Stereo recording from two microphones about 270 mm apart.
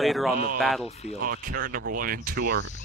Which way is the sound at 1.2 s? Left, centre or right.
Right.